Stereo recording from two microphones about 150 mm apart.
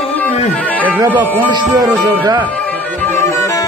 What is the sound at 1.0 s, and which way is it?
Music, 30° right (ahead or behind).